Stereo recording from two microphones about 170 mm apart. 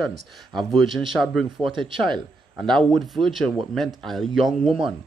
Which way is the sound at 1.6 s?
30° right (ahead or behind).